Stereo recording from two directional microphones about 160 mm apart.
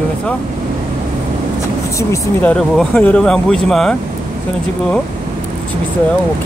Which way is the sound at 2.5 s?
5° left (ahead or behind).